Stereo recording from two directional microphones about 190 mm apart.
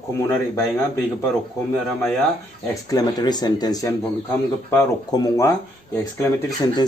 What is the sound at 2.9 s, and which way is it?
Speech, 20° left (ahead or behind).